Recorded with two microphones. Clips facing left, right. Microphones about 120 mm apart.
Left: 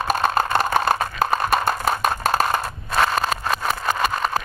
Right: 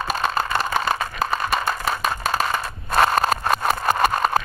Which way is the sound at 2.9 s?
45° right (ahead or behind).